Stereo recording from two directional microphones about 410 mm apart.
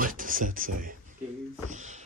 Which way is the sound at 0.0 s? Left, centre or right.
Centre.